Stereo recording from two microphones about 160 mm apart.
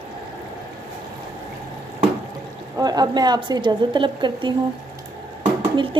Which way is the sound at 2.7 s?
25° right (ahead or behind).